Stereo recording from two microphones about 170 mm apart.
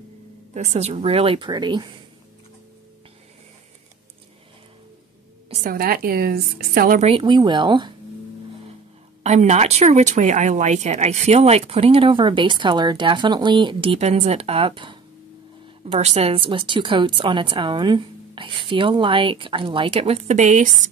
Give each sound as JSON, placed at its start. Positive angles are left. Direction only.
{"t": 0.6, "sound": "speech", "side_deg": -40}
{"t": 5.5, "sound": "a woman's voice", "side_deg": -50}
{"t": 7.0, "sound": "speech", "side_deg": -35}
{"t": 9.2, "sound": "speech", "side_deg": -45}